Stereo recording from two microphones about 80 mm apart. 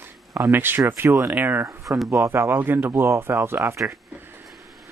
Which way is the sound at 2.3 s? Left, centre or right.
Right.